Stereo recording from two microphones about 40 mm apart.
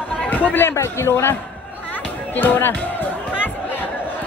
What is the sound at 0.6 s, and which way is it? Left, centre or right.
Speech, left.